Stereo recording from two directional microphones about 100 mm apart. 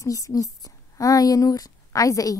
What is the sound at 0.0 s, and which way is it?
A woman's voice, 35° left (ahead or behind).